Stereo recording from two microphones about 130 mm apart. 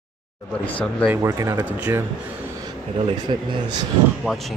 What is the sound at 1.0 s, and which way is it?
Speech, 20° right (ahead or behind).